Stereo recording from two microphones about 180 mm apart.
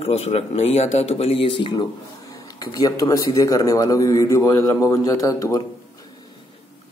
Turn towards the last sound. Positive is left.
turn(degrees=20)  # may be behind; listen again after turning